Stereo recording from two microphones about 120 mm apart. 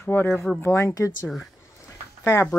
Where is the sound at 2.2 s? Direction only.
20° left (ahead or behind).